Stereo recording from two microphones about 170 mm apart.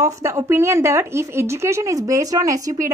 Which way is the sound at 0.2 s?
20° right (ahead or behind).